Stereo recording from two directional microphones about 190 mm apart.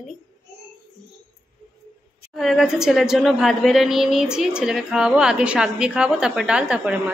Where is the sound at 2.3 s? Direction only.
Centre (ahead or behind).